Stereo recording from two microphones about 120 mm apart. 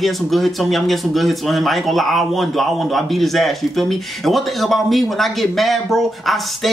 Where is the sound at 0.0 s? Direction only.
Centre (ahead or behind).